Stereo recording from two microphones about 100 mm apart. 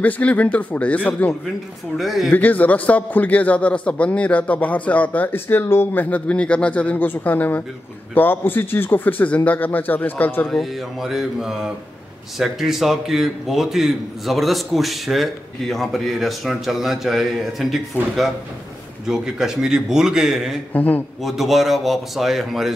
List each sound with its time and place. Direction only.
0.0 s a man's voice: 15° left (ahead or behind)
2.0 s a man's voice: centre (ahead or behind)
2.3 s a man's voice: 15° left (ahead or behind)
10.5 s a man's voice: centre (ahead or behind)
17.9 s a man's voice: 20° left (ahead or behind)
19.0 s a man's voice: 5° right (ahead or behind)
20.7 s a man's voice: 15° left (ahead or behind)
21.2 s a man's voice: centre (ahead or behind)